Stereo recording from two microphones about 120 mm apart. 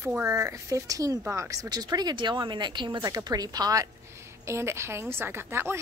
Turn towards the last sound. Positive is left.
turn(degrees=-20)  # may be behind; listen again after turning